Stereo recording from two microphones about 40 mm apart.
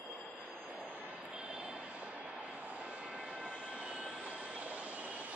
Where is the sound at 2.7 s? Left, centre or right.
Right.